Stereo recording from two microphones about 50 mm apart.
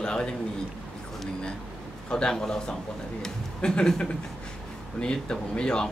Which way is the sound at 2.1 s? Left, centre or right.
Centre.